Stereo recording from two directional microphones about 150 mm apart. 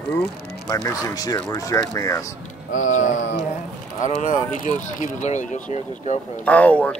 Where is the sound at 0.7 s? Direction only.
25° left (ahead or behind).